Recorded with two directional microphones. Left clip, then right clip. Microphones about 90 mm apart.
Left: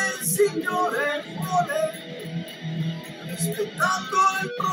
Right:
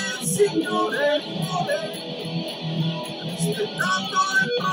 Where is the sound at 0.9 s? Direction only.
15° left (ahead or behind).